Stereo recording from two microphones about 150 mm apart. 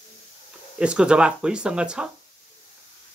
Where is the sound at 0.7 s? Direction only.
5° right (ahead or behind).